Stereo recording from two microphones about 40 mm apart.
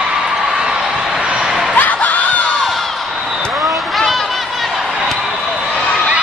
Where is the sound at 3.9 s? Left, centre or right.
Centre.